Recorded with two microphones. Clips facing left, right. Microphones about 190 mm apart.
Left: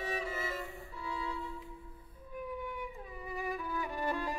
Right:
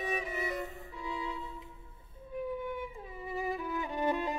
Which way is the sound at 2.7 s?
25° right (ahead or behind).